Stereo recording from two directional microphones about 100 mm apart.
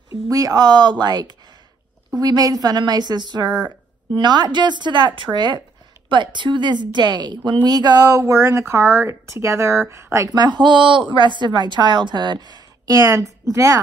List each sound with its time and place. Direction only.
0.1 s a woman's voice: 35° right (ahead or behind)